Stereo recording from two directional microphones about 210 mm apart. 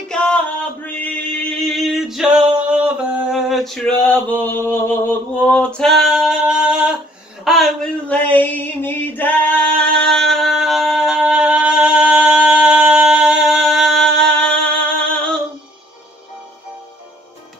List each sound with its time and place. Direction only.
0.1 s music: 5° left (ahead or behind)
0.8 s male singing: 5° left (ahead or behind)
4.0 s a sound: 10° left (ahead or behind)
14.5 s music: 5° left (ahead or behind)